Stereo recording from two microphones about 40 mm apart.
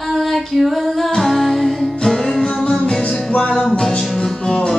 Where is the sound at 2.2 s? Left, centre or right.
Centre.